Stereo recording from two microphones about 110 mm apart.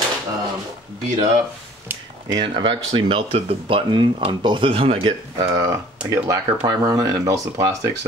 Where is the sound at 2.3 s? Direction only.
50° right (ahead or behind).